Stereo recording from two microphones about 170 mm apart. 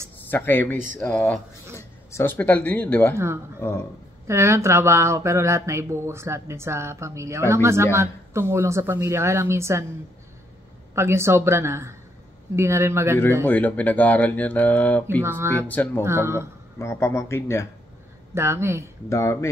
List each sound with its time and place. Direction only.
0.3 s speech: 10° left (ahead or behind)
4.3 s speech: 15° right (ahead or behind)
11.0 s speech: 15° right (ahead or behind)
13.5 s speech: 10° left (ahead or behind)
15.2 s speech: 15° right (ahead or behind)
15.7 s speech: 10° left (ahead or behind)
16.0 s speech: 15° right (ahead or behind)
16.7 s speech: 15° left (ahead or behind)
18.3 s speech: 15° right (ahead or behind)
19.0 s speech: 15° left (ahead or behind)